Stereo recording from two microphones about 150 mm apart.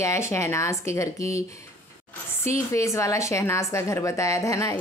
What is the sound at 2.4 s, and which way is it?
Speech, 20° left (ahead or behind).